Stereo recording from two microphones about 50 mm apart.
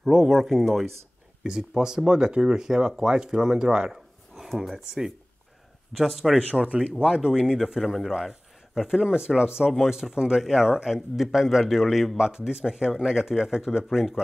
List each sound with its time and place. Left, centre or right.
0.0 s a man's voice: centre
1.6 s a man's voice: centre
6.5 s a man's voice: centre